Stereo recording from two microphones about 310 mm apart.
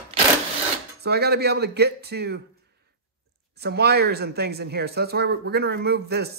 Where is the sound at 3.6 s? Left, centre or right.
Right.